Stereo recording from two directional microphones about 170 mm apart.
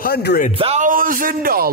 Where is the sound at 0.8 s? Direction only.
55° right (ahead or behind).